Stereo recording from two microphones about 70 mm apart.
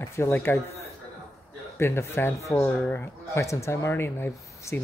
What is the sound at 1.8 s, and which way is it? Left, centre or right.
Speech, left.